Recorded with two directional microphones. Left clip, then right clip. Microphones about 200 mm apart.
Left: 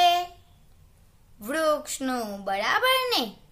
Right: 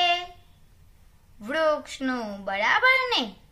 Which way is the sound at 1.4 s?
55° left (ahead or behind).